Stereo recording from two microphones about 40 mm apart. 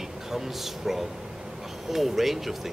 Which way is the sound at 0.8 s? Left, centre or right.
Centre.